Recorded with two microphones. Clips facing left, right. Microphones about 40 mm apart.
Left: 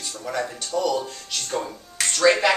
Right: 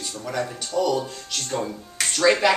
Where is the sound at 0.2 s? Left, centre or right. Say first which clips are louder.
Even; centre.